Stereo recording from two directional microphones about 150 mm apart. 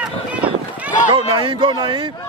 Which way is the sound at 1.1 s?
35° right (ahead or behind).